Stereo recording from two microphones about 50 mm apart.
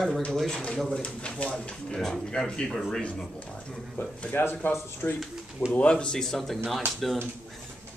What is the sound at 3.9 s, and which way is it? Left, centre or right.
Speech, left.